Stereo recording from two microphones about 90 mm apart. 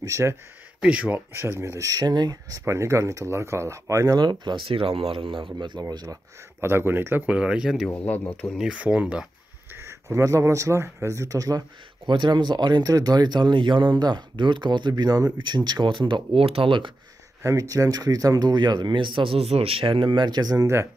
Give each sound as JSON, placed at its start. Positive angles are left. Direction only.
{"t": 0.0, "sound": "speech", "side_deg": -30}
{"t": 0.8, "sound": "speech", "side_deg": -15}
{"t": 2.6, "sound": "speech", "side_deg": -30}
{"t": 4.2, "sound": "speech", "side_deg": -55}
{"t": 4.6, "sound": "speech", "side_deg": -90}
{"t": 6.6, "sound": "speech", "side_deg": -25}
{"t": 7.2, "sound": "speech", "side_deg": -10}
{"t": 7.9, "sound": "speech", "side_deg": 15}
{"t": 8.5, "sound": "speech", "side_deg": -10}
{"t": 9.8, "sound": "speech", "side_deg": -30}
{"t": 12.1, "sound": "speech", "side_deg": -60}
{"t": 17.4, "sound": "speech", "side_deg": -35}
{"t": 20.6, "sound": "speech", "side_deg": -30}